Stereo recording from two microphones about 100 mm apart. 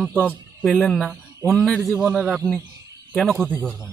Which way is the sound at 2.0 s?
10° right (ahead or behind).